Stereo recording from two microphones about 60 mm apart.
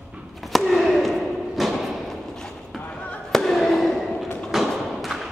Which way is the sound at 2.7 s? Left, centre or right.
Left.